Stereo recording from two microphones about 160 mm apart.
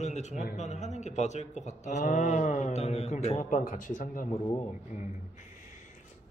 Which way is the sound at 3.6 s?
55° left (ahead or behind).